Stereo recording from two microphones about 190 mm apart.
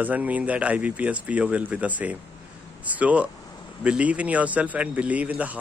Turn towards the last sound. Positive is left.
turn(degrees=-5)  # may be behind; listen again after turning